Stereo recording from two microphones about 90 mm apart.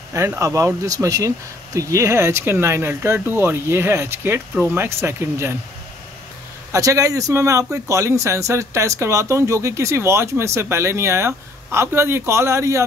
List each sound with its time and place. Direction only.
0.4 s speech: 35° right (ahead or behind)
6.7 s speech: 35° right (ahead or behind)